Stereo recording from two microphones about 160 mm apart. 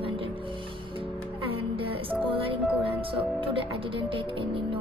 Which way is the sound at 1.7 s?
35° right (ahead or behind).